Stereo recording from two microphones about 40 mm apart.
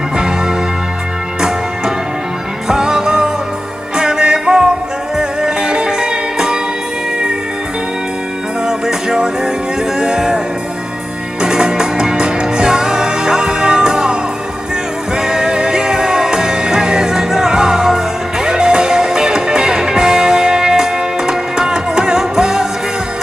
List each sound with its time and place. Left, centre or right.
2.7 s music: centre
8.6 s music: centre
11.4 s music: centre
15.1 s music: centre